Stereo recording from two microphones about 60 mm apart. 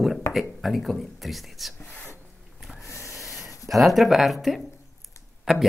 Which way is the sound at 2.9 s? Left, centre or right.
Left.